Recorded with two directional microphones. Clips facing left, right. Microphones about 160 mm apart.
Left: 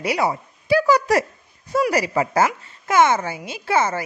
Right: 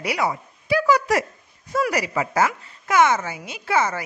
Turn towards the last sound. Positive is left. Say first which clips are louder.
# left 2 dB
turn(degrees=30)  # may be behind; listen again after turning